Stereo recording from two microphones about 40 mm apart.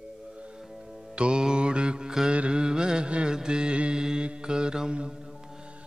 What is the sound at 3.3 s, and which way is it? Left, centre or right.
Mantra, centre.